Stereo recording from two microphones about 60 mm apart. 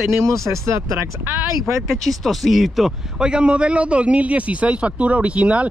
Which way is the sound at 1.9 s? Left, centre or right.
Centre.